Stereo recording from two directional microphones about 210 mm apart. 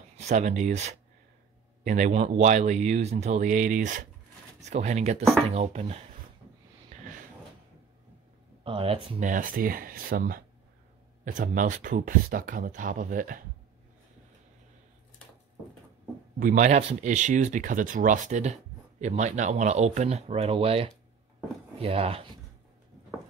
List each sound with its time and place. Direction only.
0.2 s speech: 35° right (ahead or behind)
6.9 s a sound: 30° right (ahead or behind)
8.6 s speech: 25° right (ahead or behind)
16.3 s speech: 40° right (ahead or behind)